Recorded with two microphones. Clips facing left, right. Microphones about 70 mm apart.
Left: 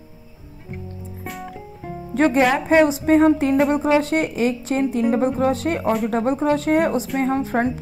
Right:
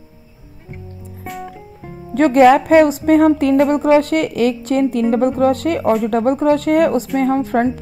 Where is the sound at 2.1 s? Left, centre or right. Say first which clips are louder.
Right 7 dB; right.